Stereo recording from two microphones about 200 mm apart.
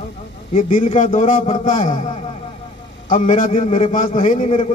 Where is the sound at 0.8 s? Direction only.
40° left (ahead or behind).